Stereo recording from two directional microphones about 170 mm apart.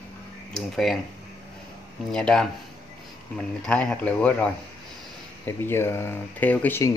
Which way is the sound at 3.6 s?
5° left (ahead or behind).